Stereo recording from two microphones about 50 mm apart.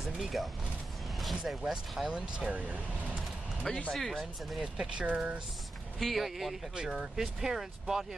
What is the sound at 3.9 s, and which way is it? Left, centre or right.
Speech, centre.